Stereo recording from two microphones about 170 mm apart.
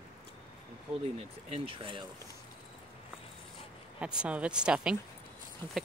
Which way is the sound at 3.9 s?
5° right (ahead or behind).